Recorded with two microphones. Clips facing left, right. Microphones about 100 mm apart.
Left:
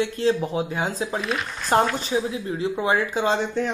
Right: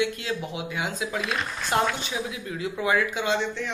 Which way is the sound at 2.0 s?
35° left (ahead or behind).